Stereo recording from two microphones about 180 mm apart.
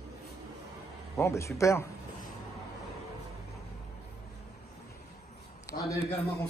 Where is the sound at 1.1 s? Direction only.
15° left (ahead or behind).